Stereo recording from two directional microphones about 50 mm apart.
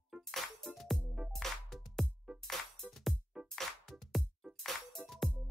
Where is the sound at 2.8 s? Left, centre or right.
Centre.